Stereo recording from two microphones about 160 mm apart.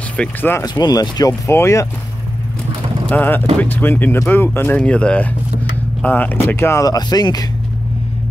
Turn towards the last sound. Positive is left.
turn(degrees=25)  # may be behind; listen again after turning